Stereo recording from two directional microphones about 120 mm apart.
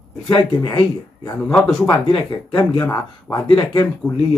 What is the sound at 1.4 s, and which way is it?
Speech, 10° left (ahead or behind).